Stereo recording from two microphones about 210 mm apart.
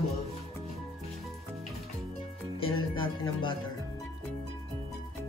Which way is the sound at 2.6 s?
25° left (ahead or behind).